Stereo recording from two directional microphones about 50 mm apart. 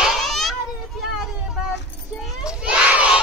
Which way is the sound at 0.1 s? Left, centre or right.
Centre.